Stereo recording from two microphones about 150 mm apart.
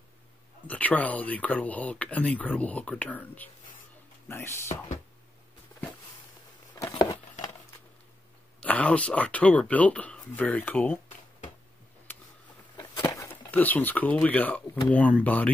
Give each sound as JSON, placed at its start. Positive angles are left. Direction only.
{"t": 0.7, "sound": "speech", "side_deg": 10}
{"t": 4.6, "sound": "speech", "side_deg": 50}
{"t": 6.7, "sound": "a sound", "side_deg": 25}
{"t": 8.5, "sound": "speech", "side_deg": 10}
{"t": 13.0, "sound": "a sound", "side_deg": 20}
{"t": 13.5, "sound": "speech", "side_deg": 10}